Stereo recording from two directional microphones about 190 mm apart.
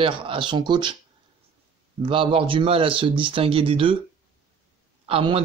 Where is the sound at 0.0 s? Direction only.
25° right (ahead or behind).